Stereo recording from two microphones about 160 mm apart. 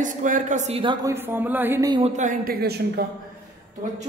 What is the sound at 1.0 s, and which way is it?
Speech, 15° right (ahead or behind).